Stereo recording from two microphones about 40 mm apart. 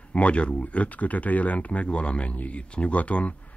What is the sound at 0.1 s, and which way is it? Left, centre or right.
Speech, left.